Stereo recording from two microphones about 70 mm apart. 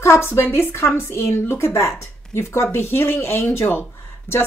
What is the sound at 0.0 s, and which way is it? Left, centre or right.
A woman's voice, left.